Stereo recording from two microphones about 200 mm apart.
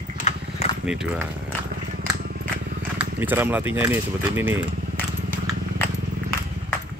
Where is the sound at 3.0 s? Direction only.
10° right (ahead or behind).